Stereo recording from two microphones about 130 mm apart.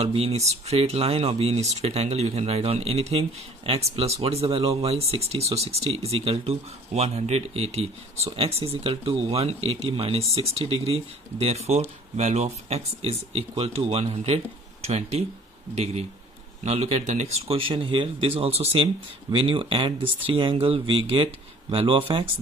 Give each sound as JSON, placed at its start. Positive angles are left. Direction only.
{"t": 0.0, "sound": "speech", "side_deg": -55}